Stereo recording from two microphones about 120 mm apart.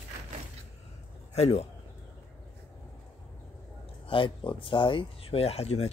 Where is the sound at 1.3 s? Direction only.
60° left (ahead or behind).